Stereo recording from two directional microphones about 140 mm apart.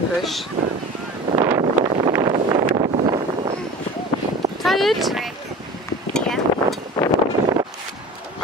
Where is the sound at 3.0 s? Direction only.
35° right (ahead or behind).